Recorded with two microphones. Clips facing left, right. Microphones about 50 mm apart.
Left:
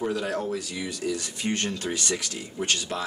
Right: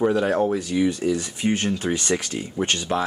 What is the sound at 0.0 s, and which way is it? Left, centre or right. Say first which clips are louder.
Speech: right 8 dB; right.